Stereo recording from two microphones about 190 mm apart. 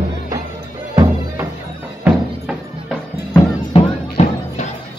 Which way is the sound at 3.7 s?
30° left (ahead or behind).